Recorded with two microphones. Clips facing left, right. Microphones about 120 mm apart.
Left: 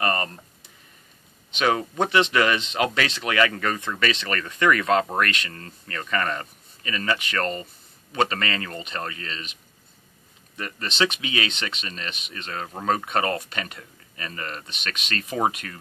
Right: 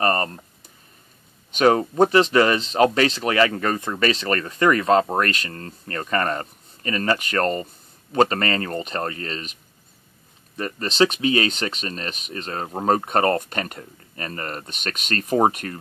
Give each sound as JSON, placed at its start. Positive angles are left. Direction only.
{"t": 0.0, "sound": "speech", "side_deg": -35}
{"t": 1.5, "sound": "speech", "side_deg": -40}
{"t": 10.6, "sound": "speech", "side_deg": -35}